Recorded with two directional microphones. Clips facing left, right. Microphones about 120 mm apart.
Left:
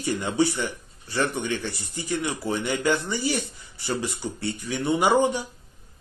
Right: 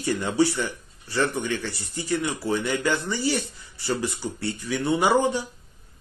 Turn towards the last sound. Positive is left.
turn(degrees=15)  # may be behind; listen again after turning